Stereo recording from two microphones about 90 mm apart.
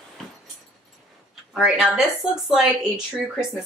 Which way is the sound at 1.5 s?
Centre (ahead or behind).